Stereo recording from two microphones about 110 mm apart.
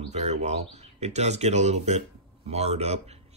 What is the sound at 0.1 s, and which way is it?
Speech, 90° right.